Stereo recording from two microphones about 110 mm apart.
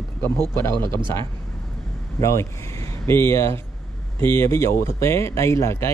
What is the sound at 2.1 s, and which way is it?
Speech, 25° left (ahead or behind).